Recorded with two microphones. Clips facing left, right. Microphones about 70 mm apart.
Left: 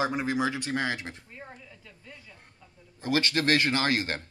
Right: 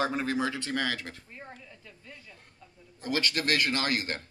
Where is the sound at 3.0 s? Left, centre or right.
Left.